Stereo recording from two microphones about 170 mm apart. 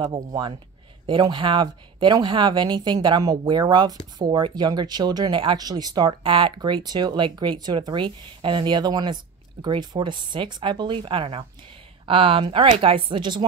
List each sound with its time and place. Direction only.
0.0 s speech: 30° right (ahead or behind)